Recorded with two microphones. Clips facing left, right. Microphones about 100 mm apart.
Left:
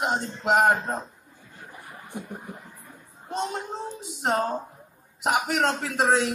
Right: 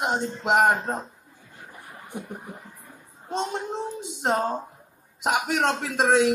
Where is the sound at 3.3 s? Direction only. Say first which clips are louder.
Right 1 dB; 20° right (ahead or behind).